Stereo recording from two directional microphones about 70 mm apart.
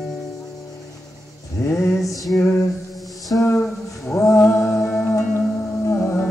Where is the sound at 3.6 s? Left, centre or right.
Centre.